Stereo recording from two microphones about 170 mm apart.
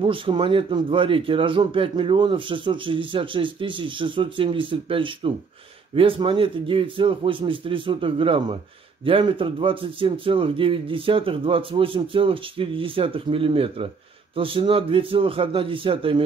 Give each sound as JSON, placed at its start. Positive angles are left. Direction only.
{"t": 0.0, "sound": "a man's voice", "side_deg": -30}